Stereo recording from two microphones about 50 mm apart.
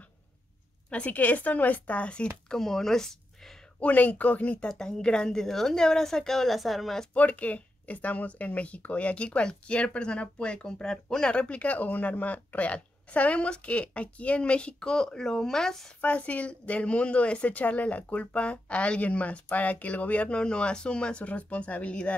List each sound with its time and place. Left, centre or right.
0.8 s speech: left
2.5 s speech: centre
3.8 s speech: left
4.6 s a woman's voice: centre
7.2 s speech: left; by 15.9 s centre
16.0 s speech: left